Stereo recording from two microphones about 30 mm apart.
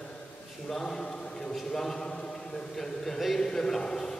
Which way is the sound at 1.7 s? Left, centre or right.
Centre.